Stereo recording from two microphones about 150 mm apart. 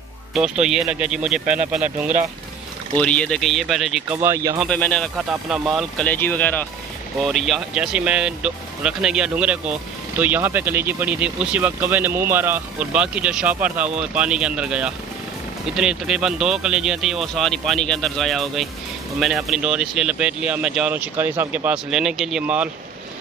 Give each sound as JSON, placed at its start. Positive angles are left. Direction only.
{"t": 0.3, "sound": "speech", "side_deg": -5}
{"t": 2.9, "sound": "speech", "side_deg": 5}
{"t": 4.2, "sound": "speech", "side_deg": -20}
{"t": 4.6, "sound": "speech", "side_deg": 10}
{"t": 6.0, "sound": "speech", "side_deg": 10}
{"t": 7.3, "sound": "speech", "side_deg": 0}